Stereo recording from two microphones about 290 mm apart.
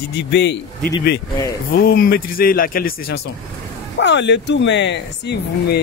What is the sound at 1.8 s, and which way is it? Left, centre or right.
Speech, left.